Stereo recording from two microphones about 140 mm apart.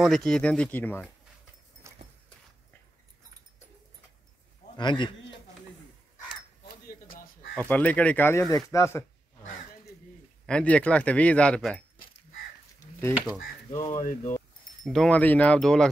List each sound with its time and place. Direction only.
0.0 s speech: centre (ahead or behind)
1.8 s a sound: 20° right (ahead or behind)
4.7 s a man's voice: 35° left (ahead or behind)
6.9 s a sound: 90° left
7.5 s speech: 10° left (ahead or behind)
10.4 s speech: 10° left (ahead or behind)
13.9 s speech: 75° left (ahead or behind)
14.9 s speech: 5° left (ahead or behind)